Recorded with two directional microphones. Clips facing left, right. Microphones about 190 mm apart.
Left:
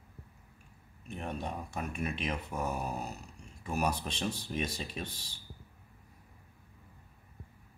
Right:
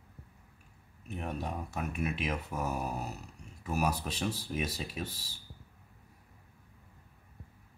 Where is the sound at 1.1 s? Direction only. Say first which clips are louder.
Right 1 dB; 5° right (ahead or behind).